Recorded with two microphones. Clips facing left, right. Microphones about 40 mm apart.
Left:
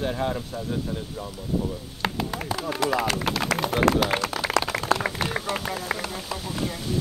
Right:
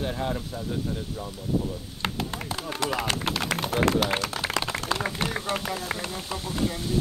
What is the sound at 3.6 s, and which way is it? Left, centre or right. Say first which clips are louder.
Speech: left 2 dB; left.